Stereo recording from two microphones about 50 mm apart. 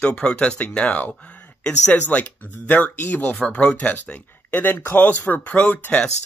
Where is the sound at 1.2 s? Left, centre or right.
Left.